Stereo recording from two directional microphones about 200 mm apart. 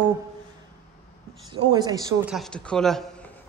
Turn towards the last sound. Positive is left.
turn(degrees=0)  # may be behind; listen again after turning